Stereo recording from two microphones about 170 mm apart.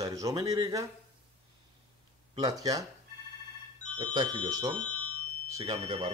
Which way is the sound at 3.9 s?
25° right (ahead or behind).